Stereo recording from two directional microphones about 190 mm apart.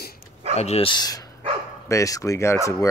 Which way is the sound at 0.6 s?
30° left (ahead or behind).